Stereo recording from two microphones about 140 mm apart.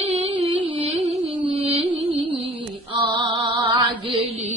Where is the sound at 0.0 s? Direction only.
45° right (ahead or behind).